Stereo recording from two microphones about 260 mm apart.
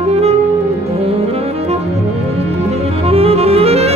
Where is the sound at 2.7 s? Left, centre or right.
Right.